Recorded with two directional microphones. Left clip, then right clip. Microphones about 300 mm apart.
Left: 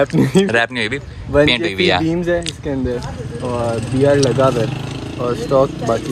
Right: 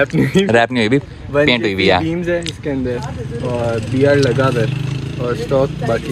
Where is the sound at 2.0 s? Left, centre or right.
Left.